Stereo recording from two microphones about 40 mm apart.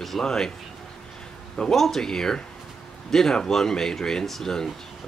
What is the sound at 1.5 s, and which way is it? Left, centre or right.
Speech, centre.